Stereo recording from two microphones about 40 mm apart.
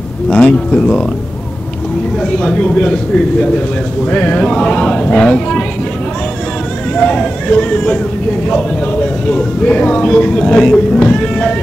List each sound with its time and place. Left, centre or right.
0.3 s speech: left
2.3 s speech: centre; by 4.4 s left
4.4 s speech: left
7.0 s speech: left